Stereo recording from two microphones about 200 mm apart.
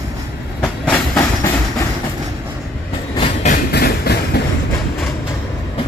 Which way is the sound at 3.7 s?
55° left (ahead or behind).